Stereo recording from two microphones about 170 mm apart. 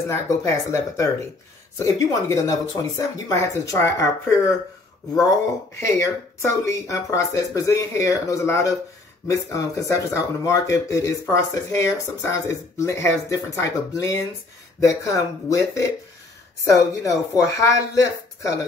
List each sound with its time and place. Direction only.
0.1 s speech: 15° left (ahead or behind)